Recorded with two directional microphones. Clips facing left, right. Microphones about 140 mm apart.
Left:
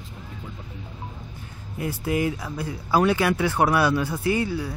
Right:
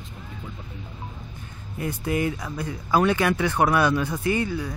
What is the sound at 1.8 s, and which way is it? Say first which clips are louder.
Speech: left 1 dB; 5° left (ahead or behind).